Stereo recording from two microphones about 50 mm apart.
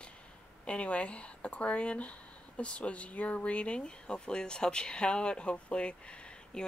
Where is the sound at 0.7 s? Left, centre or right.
Left.